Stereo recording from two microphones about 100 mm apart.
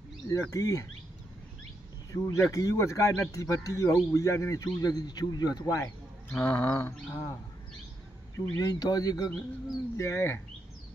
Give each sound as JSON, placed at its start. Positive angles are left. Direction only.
{"t": 0.3, "sound": "speech", "side_deg": 35}
{"t": 2.1, "sound": "speech", "side_deg": 30}
{"t": 5.8, "sound": "speech", "side_deg": 20}
{"t": 6.8, "sound": "speech", "side_deg": 30}
{"t": 8.4, "sound": "speech", "side_deg": 35}